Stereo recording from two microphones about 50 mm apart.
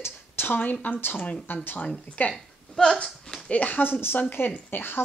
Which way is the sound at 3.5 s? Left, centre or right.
Left.